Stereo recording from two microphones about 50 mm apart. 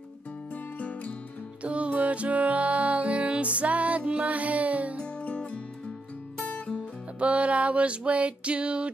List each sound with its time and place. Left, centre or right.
0.7 s music: left
1.6 s music: right
5.0 s music: left
7.2 s a sound: right